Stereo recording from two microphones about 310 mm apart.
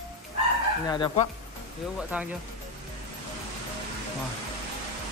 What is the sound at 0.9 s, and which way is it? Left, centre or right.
Speech, centre.